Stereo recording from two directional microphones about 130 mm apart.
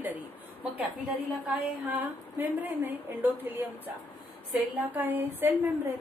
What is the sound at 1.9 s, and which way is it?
A woman's voice, 15° right (ahead or behind).